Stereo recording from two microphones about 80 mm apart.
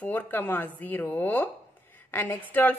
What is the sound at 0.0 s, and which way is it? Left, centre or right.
A woman's voice, left.